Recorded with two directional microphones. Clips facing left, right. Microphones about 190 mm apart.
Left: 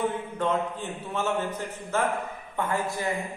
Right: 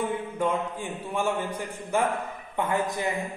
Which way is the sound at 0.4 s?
10° right (ahead or behind).